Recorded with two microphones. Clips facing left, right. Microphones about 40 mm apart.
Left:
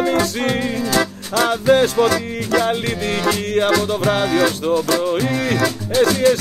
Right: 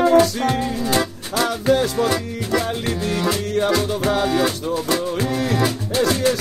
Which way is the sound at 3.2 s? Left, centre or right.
Left.